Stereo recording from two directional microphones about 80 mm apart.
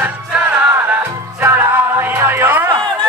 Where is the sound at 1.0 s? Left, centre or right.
Right.